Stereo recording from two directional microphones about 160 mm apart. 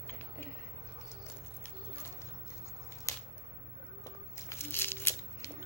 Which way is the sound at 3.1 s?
20° left (ahead or behind).